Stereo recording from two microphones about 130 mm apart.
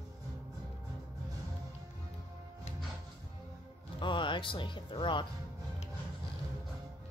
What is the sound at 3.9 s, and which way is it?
Speech, 40° left (ahead or behind).